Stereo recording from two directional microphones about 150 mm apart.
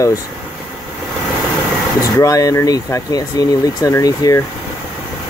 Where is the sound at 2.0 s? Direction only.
25° left (ahead or behind).